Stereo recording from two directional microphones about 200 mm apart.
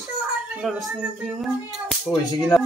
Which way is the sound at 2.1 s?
Centre (ahead or behind).